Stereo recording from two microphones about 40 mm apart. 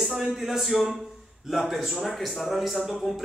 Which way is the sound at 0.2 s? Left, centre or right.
Centre.